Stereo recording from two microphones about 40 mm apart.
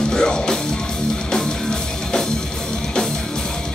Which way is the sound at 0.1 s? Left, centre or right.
Centre.